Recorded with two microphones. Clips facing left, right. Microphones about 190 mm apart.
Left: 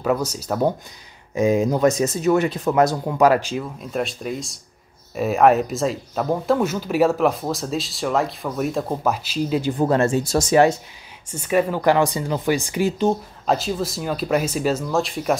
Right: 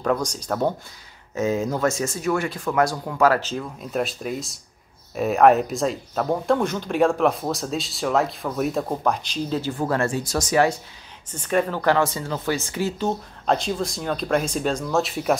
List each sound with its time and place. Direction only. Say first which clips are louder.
0.0 s speech: left 2 dB; 5° left (ahead or behind)
3.8 s speech: even; centre (ahead or behind); by 10.8 s 25° left (ahead or behind)
11.2 s speech: left 3 dB; 10° left (ahead or behind)
13.5 s speech: left 1 dB; 5° left (ahead or behind)